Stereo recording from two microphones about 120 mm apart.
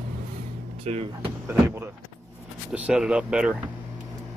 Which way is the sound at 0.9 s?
60° right (ahead or behind).